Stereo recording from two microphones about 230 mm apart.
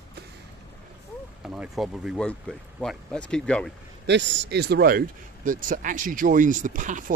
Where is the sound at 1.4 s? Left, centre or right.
Centre.